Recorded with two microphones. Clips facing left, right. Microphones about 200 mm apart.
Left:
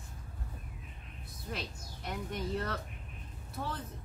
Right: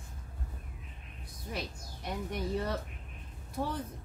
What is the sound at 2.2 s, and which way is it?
A woman's voice, 10° right (ahead or behind).